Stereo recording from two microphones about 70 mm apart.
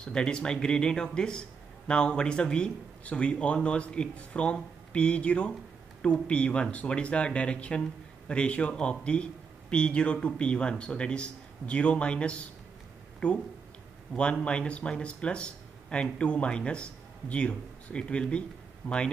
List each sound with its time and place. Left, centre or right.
0.0 s speech: centre
14.4 s speech: centre